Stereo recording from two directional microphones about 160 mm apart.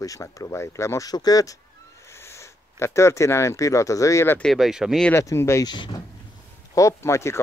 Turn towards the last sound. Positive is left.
turn(degrees=15)  # may be behind; listen again after turning